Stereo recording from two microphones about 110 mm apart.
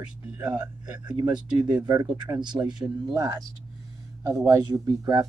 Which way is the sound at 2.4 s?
40° right (ahead or behind).